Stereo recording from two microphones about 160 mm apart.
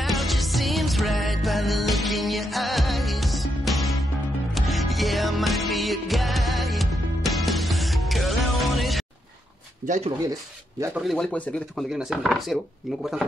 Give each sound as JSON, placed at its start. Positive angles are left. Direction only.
{"t": 0.0, "sound": "music", "side_deg": 0}
{"t": 9.8, "sound": "speech", "side_deg": -45}
{"t": 11.0, "sound": "speech", "side_deg": 0}